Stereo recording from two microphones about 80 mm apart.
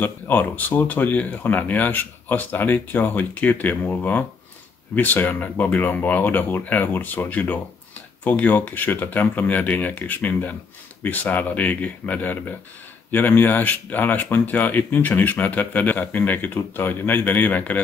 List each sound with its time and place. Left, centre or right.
0.0 s speech: left